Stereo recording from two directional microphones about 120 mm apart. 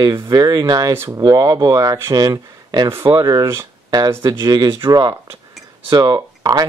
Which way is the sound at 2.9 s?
20° right (ahead or behind).